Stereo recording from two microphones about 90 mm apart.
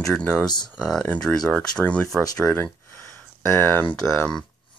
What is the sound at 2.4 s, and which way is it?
Speech, 25° left (ahead or behind).